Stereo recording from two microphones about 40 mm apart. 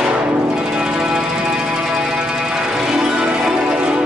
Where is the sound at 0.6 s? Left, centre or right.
Right.